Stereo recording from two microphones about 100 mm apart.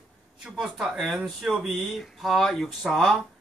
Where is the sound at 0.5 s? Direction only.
5° right (ahead or behind).